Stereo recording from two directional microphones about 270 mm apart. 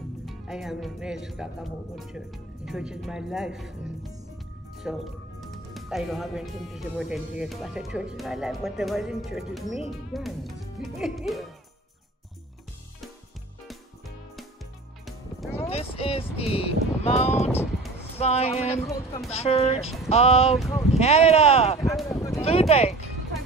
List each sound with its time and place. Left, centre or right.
0.2 s speech: centre
13.7 s music: centre
15.7 s music: left
17.5 s music: centre
18.1 s speech: left
20.5 s speech: centre
21.0 s speech: left
22.1 s a sound: centre
22.4 s speech: left